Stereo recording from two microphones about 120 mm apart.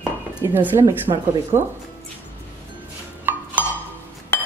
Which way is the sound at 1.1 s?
60° right (ahead or behind).